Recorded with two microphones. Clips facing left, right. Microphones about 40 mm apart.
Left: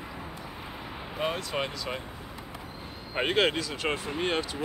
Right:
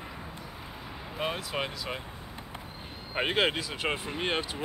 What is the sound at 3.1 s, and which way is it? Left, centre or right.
Speech, centre.